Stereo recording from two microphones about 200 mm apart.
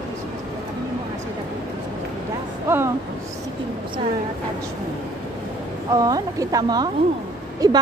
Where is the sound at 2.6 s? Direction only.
10° right (ahead or behind).